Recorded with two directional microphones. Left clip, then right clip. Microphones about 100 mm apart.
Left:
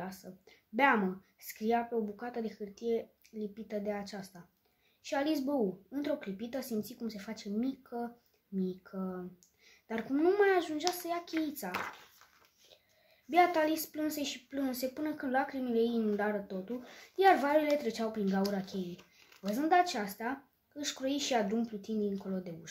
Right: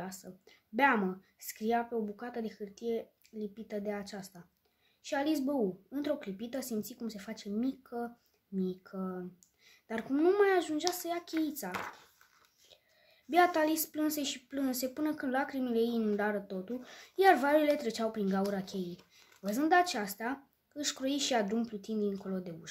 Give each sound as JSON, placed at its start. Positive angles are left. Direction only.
{"t": 0.0, "sound": "a child's voice", "side_deg": -35}
{"t": 13.3, "sound": "a woman's voice", "side_deg": -45}
{"t": 18.9, "sound": "a sound", "side_deg": 10}
{"t": 19.5, "sound": "a woman's voice", "side_deg": -45}